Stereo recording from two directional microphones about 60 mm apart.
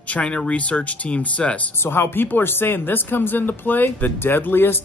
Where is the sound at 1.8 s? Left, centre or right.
Left.